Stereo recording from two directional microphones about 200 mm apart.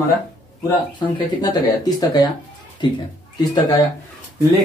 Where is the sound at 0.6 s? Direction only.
20° left (ahead or behind).